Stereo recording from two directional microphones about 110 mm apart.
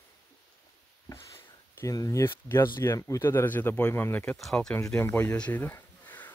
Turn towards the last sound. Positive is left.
turn(degrees=15)  # may be behind; listen again after turning